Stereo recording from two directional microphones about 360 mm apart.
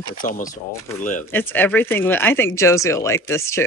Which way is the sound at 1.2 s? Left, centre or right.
Centre.